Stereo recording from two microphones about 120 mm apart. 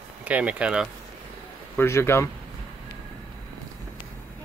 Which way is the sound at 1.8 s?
20° left (ahead or behind).